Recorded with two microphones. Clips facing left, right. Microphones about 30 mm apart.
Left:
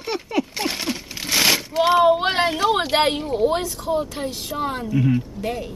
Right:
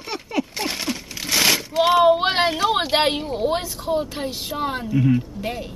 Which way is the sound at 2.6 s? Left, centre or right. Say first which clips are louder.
Left 1 dB; centre.